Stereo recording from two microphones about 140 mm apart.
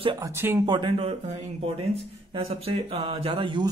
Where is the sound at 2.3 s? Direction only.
45° right (ahead or behind).